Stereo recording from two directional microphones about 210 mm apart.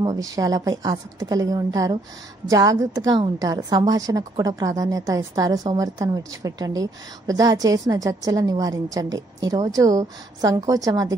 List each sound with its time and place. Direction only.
0.0 s a woman's voice: 15° right (ahead or behind)